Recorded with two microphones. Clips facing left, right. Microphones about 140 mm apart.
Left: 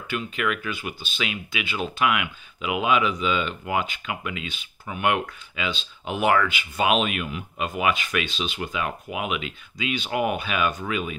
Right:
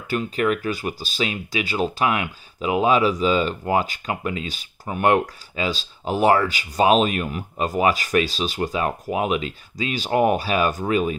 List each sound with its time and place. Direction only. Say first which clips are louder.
0.1 s speech: right 6 dB; 40° right (ahead or behind)